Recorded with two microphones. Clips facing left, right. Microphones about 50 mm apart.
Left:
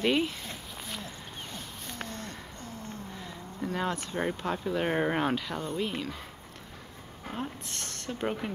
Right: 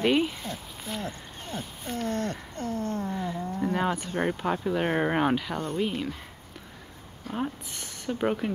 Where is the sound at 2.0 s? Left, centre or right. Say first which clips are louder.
Right 10 dB; right.